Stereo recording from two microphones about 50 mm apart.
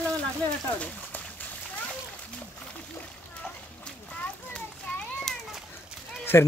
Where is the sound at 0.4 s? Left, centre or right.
Left.